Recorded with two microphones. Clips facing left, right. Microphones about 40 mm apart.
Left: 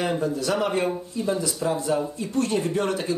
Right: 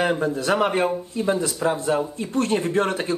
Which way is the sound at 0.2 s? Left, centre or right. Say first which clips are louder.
Right 3 dB; right.